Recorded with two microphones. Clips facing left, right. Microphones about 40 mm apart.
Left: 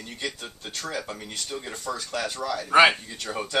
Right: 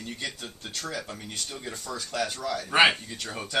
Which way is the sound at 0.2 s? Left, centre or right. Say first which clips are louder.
Left 2 dB; centre.